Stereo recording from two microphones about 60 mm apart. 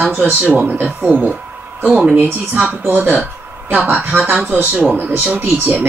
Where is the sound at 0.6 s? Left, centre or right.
Right.